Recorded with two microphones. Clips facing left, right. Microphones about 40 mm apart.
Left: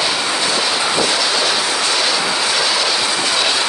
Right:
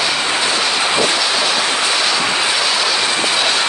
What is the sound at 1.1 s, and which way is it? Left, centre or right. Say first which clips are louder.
Train: even; centre.